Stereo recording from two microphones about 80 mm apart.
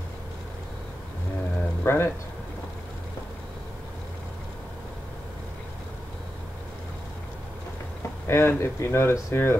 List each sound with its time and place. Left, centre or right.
1.8 s speech: left
8.3 s speech: left